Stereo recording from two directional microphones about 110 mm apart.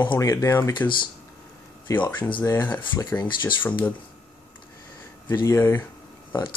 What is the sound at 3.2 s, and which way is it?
Speech, 45° left (ahead or behind).